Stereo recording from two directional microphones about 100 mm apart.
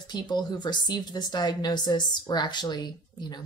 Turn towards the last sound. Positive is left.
turn(degrees=45)  # may be behind; listen again after turning